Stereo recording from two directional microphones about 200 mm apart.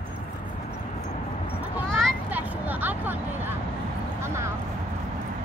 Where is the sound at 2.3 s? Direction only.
10° right (ahead or behind).